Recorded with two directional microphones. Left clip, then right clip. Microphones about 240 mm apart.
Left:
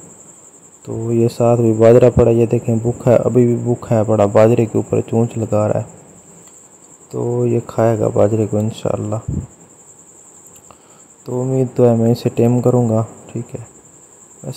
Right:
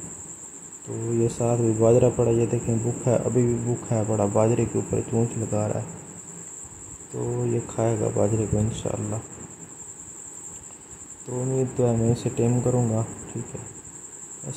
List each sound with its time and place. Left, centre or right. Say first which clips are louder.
0.8 s speech: left 8 dB; left
7.2 s speech: left 10 dB; left
11.2 s speech: left 8 dB; left